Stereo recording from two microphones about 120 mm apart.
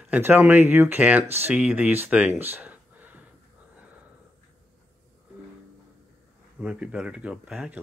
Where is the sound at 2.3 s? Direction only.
15° right (ahead or behind).